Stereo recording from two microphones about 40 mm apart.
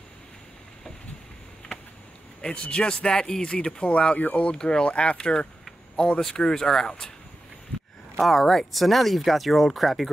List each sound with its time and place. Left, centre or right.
2.4 s speech: left
4.2 s speech: left
4.5 s speech: left
8.2 s speech: centre